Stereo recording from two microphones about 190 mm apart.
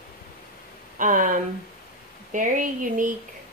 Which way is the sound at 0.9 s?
45° right (ahead or behind).